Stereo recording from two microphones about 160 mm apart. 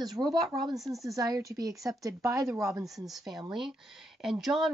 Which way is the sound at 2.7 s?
Centre (ahead or behind).